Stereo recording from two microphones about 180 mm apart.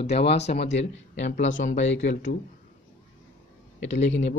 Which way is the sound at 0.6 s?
80° left.